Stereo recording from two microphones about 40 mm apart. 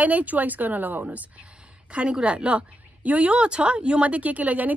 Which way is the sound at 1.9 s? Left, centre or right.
Right.